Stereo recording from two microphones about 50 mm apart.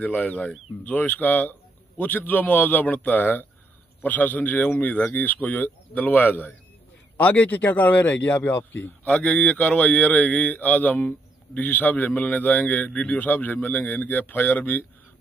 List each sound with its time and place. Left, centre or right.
0.0 s speech: left
8.5 s a man's voice: left
9.0 s speech: left
13.2 s speech: left